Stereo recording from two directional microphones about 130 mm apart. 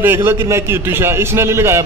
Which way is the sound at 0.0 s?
20° right (ahead or behind).